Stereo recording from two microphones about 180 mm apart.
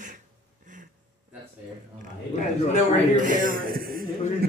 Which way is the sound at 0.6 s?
45° right (ahead or behind).